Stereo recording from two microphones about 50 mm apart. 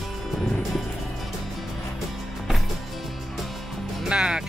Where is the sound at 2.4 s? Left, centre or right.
Centre.